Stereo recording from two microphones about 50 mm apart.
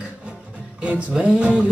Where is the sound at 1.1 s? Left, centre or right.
Right.